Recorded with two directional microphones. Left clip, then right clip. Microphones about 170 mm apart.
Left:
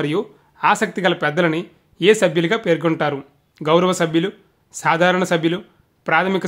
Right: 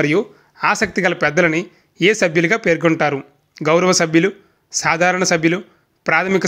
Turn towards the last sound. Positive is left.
turn(degrees=-15)  # may be behind; listen again after turning